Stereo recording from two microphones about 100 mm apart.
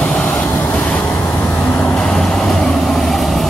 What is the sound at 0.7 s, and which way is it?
Vehicle, 10° left (ahead or behind).